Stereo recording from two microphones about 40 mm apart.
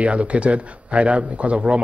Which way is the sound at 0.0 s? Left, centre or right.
Right.